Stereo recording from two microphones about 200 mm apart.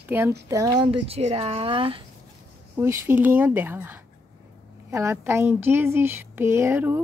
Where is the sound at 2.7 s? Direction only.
10° right (ahead or behind).